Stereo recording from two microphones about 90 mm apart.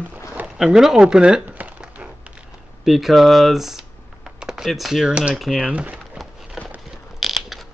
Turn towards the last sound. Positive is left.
turn(degrees=0)  # may be behind; listen again after turning